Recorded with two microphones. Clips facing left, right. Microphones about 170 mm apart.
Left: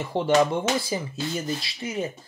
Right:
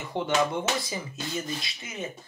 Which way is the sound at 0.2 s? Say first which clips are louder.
Left 4 dB; 30° left (ahead or behind).